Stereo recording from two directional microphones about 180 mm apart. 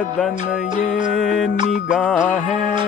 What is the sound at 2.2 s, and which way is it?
Music, 40° left (ahead or behind).